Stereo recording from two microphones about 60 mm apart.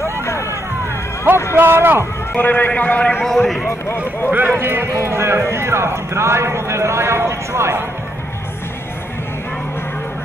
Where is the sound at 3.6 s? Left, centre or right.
Left.